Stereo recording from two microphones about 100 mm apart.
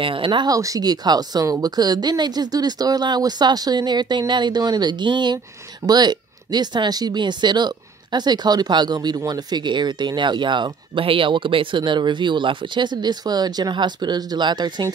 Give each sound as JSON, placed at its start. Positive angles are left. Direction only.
{"t": 0.0, "sound": "speech", "side_deg": -60}
{"t": 0.5, "sound": "speech", "side_deg": -35}